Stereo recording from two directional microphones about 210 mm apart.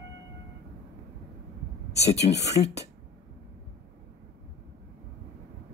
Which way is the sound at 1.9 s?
30° left (ahead or behind).